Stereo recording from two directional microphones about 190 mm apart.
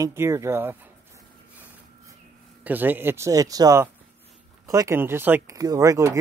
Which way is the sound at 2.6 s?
10° right (ahead or behind).